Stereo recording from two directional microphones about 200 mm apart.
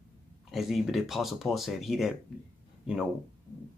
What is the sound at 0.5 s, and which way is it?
Speech, centre (ahead or behind).